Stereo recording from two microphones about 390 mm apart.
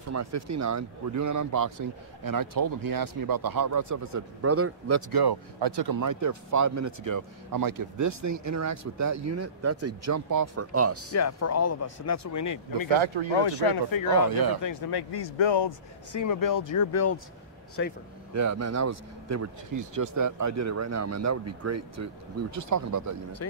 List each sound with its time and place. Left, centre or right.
0.1 s speech: right
5.1 s speech: right
5.9 s speech: right
11.1 s speech: left
13.3 s speech: left
14.3 s speech: right
14.6 s speech: left
16.1 s speech: left
17.8 s speech: left
18.3 s speech: right